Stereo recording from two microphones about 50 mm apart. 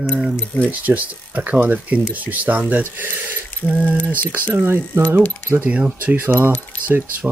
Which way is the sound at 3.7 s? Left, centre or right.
Right.